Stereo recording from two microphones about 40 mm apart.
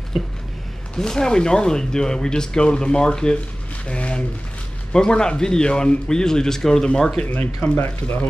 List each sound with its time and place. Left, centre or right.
0.9 s speech: centre
3.8 s a sound: left
4.9 s speech: left
7.7 s speech: left